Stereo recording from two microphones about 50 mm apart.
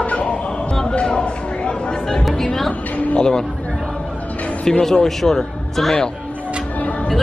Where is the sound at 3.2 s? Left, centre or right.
Centre.